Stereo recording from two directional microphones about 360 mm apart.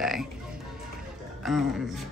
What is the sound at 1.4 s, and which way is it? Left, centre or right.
Speech, centre.